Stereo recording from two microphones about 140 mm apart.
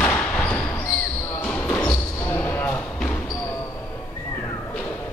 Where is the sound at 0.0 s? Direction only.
10° left (ahead or behind).